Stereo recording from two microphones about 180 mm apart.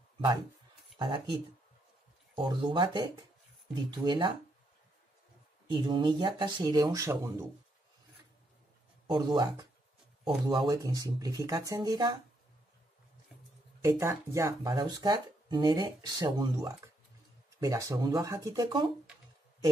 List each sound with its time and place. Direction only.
0.9 s speech: 25° right (ahead or behind)
5.7 s speech: 25° right (ahead or behind)
9.1 s speech: 25° right (ahead or behind)
13.7 s speech: 15° right (ahead or behind)